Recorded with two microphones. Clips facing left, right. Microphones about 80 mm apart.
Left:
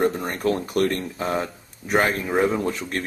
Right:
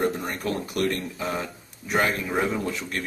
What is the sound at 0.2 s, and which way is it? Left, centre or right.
Speech, left.